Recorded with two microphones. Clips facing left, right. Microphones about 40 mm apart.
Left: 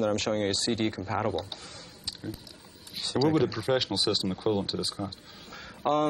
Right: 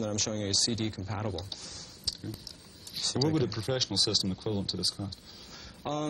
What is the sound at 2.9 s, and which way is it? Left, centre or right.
Speech, left.